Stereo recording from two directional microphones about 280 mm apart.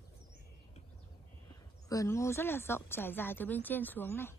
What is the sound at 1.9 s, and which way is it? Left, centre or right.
Speech, centre.